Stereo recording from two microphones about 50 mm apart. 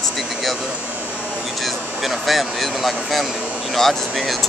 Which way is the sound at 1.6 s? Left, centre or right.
Centre.